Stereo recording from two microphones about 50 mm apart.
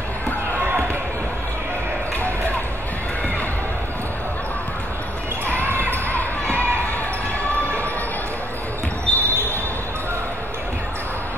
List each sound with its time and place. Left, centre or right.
9.1 s basketball bounce: left